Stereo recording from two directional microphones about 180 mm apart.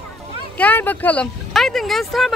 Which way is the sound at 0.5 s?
10° left (ahead or behind).